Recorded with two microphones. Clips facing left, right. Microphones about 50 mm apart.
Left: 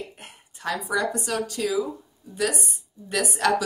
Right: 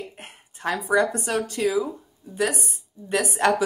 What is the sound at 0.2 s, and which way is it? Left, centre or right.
Speech, right.